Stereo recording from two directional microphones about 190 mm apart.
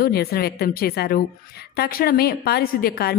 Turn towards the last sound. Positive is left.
turn(degrees=55)  # may be behind; listen again after turning